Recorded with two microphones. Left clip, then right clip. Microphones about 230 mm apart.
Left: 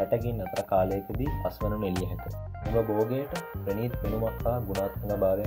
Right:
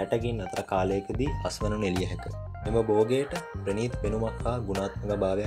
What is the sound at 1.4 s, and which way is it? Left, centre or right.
Speech, right.